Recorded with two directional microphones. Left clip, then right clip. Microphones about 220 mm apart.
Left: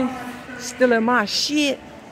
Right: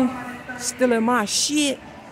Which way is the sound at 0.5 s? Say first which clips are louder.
Left 3 dB; 10° right (ahead or behind).